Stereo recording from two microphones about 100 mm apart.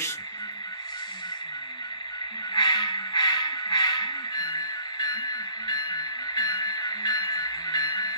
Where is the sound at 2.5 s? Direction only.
45° left (ahead or behind).